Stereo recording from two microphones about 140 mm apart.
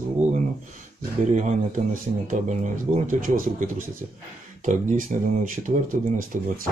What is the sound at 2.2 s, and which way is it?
Speech, 60° right (ahead or behind).